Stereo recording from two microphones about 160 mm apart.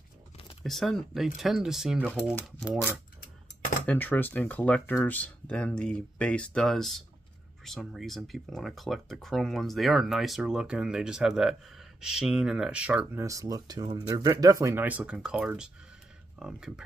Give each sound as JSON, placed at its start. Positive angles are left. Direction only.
{"t": 0.7, "sound": "speech", "side_deg": 0}
{"t": 3.8, "sound": "speech", "side_deg": 10}
{"t": 13.2, "sound": "speech", "side_deg": -20}